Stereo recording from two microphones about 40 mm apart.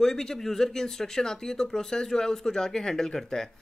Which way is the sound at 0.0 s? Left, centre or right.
Centre.